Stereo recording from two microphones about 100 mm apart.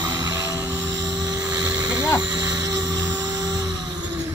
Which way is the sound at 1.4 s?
10° right (ahead or behind).